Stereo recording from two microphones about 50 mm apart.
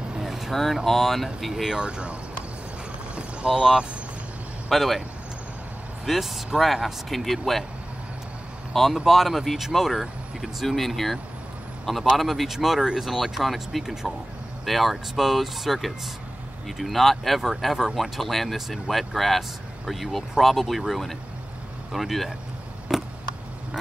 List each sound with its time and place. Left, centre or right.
0.2 s speech: centre
1.9 s speech: right
3.4 s speech: centre
6.0 s speech: centre
9.0 s a man's voice: centre
22.9 s a sound: centre